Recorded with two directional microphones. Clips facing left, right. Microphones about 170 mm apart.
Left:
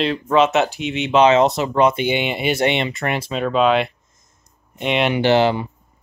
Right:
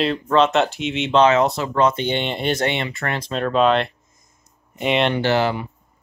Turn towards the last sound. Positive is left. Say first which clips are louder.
# left 4 dB
turn(degrees=20)  # may be behind; listen again after turning